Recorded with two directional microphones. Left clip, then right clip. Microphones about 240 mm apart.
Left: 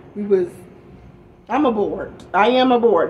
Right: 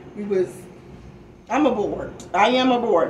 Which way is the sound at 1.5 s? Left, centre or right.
Left.